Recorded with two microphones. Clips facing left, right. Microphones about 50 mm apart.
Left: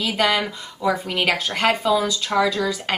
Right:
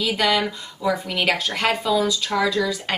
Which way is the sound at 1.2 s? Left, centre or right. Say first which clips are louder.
Left 1 dB; centre.